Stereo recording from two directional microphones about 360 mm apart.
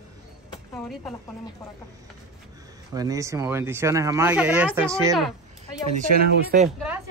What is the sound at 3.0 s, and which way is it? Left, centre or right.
Speech, centre.